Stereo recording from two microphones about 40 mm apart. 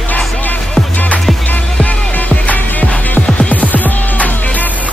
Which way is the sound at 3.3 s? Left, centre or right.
Left.